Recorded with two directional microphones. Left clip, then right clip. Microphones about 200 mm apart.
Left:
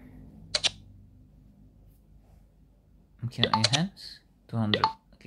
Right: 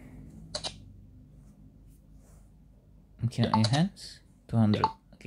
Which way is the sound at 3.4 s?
55° left (ahead or behind).